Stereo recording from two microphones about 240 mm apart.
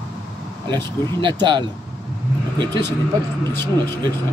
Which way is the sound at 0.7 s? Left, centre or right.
Centre.